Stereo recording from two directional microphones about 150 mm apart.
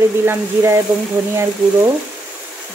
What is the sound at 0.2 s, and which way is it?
Speech, 15° right (ahead or behind).